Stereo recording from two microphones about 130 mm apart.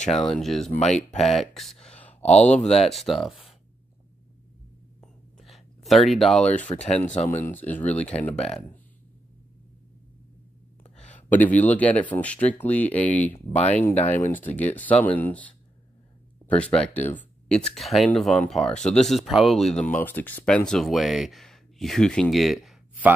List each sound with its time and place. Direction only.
0.3 s speech: 5° left (ahead or behind)
5.0 s a sound: centre (ahead or behind)
6.7 s speech: 60° left (ahead or behind)
7.2 s speech: 15° left (ahead or behind)
10.8 s speech: 10° left (ahead or behind)